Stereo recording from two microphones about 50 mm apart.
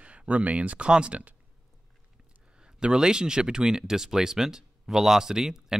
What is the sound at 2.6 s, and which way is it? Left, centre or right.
Speech, centre.